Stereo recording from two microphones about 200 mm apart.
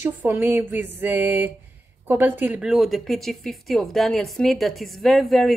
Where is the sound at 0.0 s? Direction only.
10° right (ahead or behind).